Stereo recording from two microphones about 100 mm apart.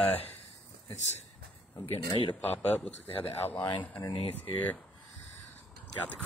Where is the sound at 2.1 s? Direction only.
75° left (ahead or behind).